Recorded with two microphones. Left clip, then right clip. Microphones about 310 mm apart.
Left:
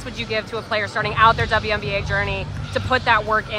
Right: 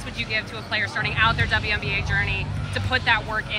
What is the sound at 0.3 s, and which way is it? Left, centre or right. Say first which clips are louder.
Speech: left 4 dB; left.